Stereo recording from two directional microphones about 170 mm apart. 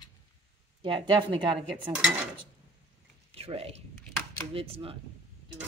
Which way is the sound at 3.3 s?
35° right (ahead or behind).